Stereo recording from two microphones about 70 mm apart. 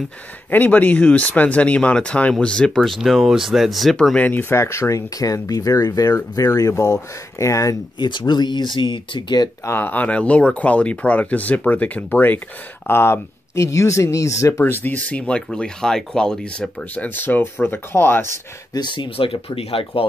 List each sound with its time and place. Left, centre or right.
0.5 s speech: left
2.8 s speech: centre
3.9 s speech: centre
4.2 s speech: left
4.5 s speech: left
6.7 s speech: left
8.0 s speech: left
9.7 s speech: left
14.6 s speech: left; by 16.7 s centre
16.9 s speech: left
18.7 s speech: left